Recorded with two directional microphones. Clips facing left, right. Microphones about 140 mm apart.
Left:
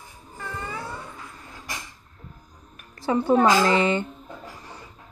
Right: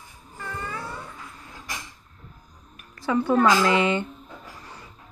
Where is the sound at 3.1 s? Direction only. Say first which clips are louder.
Left 1 dB; 30° left (ahead or behind).